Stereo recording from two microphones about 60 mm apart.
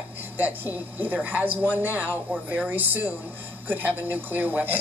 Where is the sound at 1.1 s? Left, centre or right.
Right.